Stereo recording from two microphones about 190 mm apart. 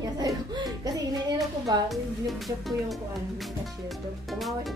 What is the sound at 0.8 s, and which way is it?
Music, 20° right (ahead or behind).